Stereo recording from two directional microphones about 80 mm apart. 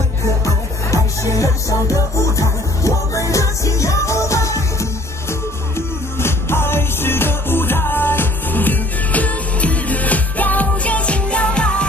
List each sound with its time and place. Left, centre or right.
0.9 s music: left; by 11.8 s centre